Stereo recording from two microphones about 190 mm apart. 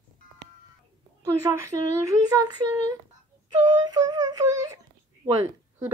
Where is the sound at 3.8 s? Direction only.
20° right (ahead or behind).